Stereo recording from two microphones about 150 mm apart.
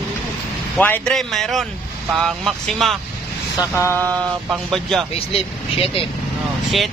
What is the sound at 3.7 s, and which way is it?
Speech, 15° left (ahead or behind).